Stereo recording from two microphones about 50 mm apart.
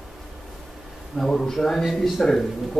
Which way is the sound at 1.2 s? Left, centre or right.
Centre.